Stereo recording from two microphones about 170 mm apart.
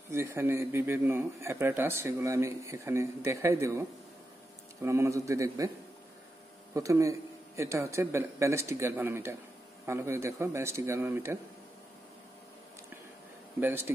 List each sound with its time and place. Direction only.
0.1 s speech: 15° right (ahead or behind)
4.8 s a man's voice: 15° right (ahead or behind)
6.7 s speech: 20° right (ahead or behind)
13.6 s speech: 15° right (ahead or behind)